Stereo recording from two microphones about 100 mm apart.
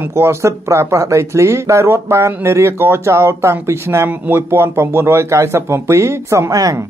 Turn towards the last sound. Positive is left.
turn(degrees=-35)  # may be behind; listen again after turning